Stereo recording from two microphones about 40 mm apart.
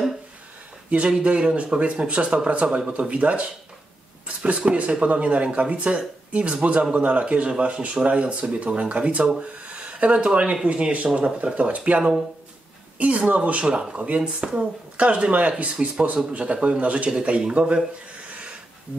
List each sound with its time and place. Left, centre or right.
1.0 s speech: right
9.7 s a sound: right
10.5 s speech: right